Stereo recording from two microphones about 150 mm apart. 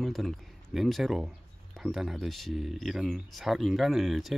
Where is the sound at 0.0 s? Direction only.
Centre (ahead or behind).